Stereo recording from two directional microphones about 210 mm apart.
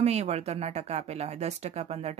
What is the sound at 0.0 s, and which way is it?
Speech, 30° right (ahead or behind).